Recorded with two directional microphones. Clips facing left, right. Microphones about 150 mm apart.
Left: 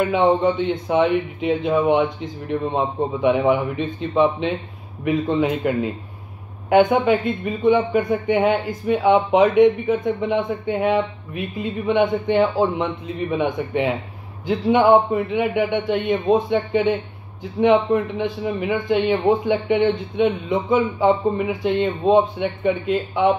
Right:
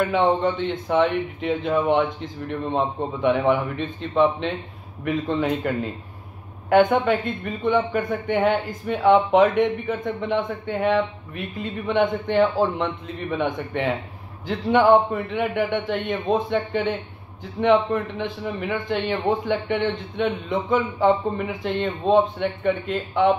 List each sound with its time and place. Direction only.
0.0 s speech: 5° left (ahead or behind)